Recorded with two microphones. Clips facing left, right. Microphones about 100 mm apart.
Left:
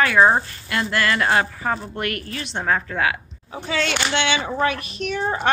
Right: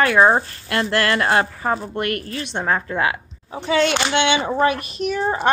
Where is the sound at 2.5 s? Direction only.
20° right (ahead or behind).